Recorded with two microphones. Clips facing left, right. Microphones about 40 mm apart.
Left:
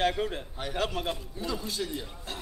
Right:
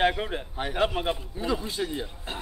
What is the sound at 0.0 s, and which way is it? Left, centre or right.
A man's voice, right.